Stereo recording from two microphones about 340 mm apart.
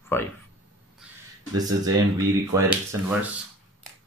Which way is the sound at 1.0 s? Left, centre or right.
Centre.